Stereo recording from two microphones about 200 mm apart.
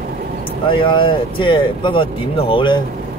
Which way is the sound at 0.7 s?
25° left (ahead or behind).